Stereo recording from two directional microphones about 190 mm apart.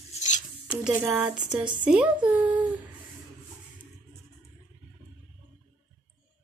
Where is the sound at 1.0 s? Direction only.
5° right (ahead or behind).